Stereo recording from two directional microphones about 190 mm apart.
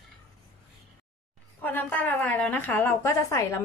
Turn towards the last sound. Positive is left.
turn(degrees=15)  # may be behind; listen again after turning